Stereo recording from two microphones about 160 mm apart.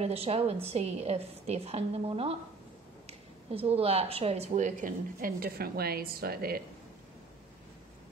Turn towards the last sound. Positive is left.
turn(degrees=-70)  # may be behind; listen again after turning